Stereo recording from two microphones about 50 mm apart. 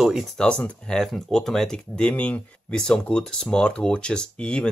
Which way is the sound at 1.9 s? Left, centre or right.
Left.